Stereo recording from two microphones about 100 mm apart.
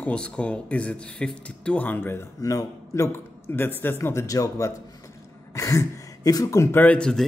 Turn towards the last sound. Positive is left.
turn(degrees=10)  # may be behind; listen again after turning